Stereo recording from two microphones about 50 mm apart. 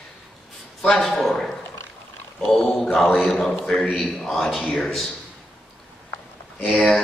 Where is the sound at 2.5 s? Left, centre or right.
Centre.